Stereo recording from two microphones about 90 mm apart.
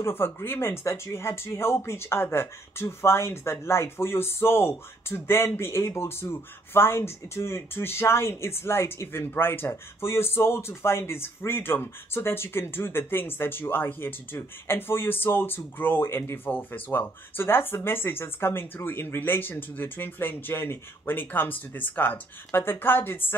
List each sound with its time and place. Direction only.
0.0 s speech: 25° left (ahead or behind)